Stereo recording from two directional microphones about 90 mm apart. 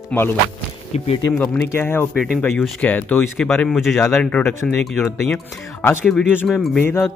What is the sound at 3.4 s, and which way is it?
Speech, 5° left (ahead or behind).